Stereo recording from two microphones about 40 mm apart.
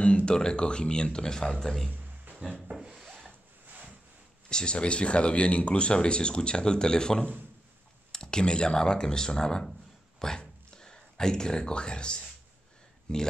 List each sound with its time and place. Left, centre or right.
0.0 s speech: left; by 1.9 s centre
2.7 s wood: centre
4.5 s speech: left
9.7 s a sound: centre
13.1 s speech: left